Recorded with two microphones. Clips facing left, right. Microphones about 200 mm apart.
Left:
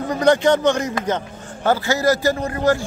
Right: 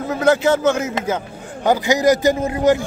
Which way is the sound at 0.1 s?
5° right (ahead or behind).